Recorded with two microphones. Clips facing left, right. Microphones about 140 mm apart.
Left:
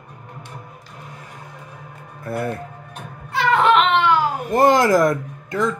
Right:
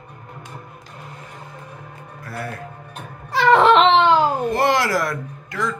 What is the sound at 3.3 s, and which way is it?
Baby cry, 35° right (ahead or behind).